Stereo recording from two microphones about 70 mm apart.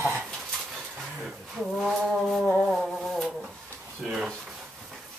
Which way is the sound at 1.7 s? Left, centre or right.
Centre.